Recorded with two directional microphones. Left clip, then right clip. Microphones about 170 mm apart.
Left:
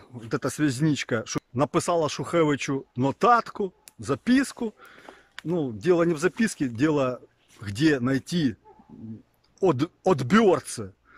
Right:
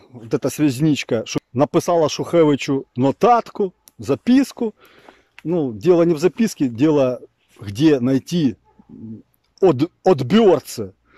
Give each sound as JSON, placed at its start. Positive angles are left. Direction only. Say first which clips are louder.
{"t": 0.3, "sound": "speech", "louder": "right 7 dB", "side_deg": -15}
{"t": 9.6, "sound": "speech", "louder": "right 8 dB", "side_deg": -20}